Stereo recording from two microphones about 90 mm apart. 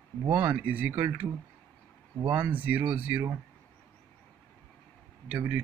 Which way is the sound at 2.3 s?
20° right (ahead or behind).